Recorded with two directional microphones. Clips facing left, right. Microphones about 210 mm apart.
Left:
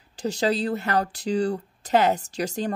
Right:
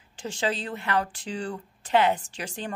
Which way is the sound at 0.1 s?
40° left (ahead or behind).